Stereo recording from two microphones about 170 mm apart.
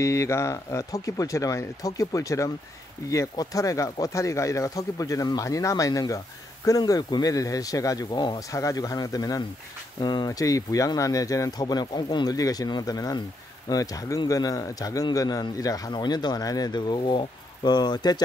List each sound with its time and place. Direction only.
0.0 s speech: 15° left (ahead or behind)